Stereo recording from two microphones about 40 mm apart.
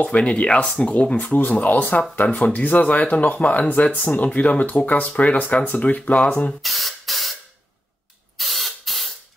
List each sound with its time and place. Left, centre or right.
0.0 s speech: left
1.1 s speech: left
3.9 s speech: left
4.2 s speech: left
6.6 s spray: centre
8.4 s spray: centre